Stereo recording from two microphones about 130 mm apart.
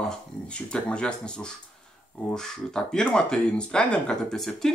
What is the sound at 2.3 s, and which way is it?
Speech, 5° left (ahead or behind).